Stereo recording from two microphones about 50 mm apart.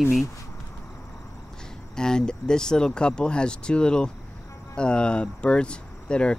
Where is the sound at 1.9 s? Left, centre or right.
Centre.